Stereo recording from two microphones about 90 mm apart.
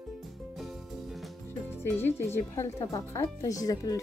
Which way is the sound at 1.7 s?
25° left (ahead or behind).